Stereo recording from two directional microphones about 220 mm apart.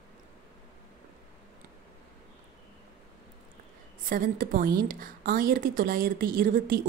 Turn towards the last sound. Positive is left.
turn(degrees=-40)  # may be behind; listen again after turning